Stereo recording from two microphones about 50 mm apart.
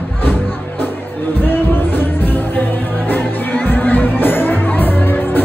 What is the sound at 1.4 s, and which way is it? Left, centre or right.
Music, left.